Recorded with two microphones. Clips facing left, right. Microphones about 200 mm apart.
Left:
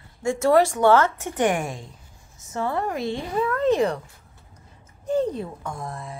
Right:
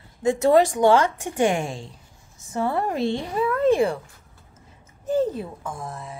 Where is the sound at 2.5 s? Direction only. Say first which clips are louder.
Right 2 dB; 10° right (ahead or behind).